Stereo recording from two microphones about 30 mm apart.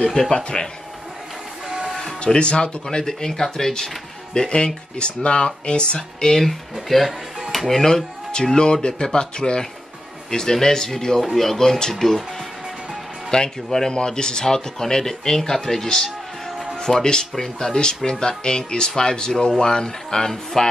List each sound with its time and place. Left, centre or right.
0.3 s speech: left
2.2 s speech: left
3.1 s speech: centre
4.3 s speech: left
5.9 s speech: centre
6.4 s speech: centre
8.5 s speech: left
13.3 s speech: left
16.7 s music: centre
17.0 s speech: left